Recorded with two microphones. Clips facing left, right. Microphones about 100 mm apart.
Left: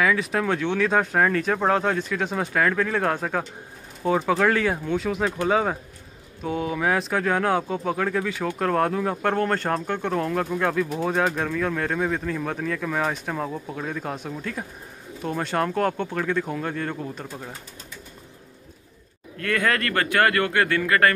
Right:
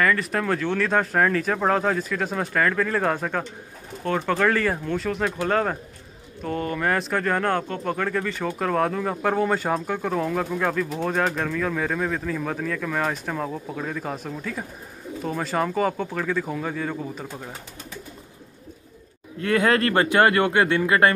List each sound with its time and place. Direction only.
0.0 s speech: centre (ahead or behind)
19.3 s speech: 25° right (ahead or behind)